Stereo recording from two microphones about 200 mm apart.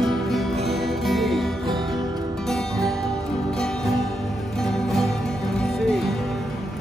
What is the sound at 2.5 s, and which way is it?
Music, centre (ahead or behind).